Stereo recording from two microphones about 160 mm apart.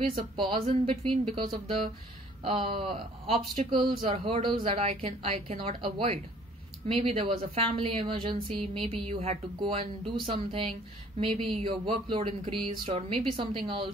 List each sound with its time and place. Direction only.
0.1 s speech: 30° right (ahead or behind)